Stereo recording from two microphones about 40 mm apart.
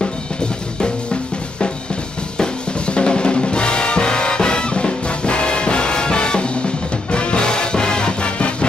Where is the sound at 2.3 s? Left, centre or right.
Left.